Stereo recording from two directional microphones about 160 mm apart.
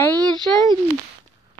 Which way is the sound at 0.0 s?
10° left (ahead or behind).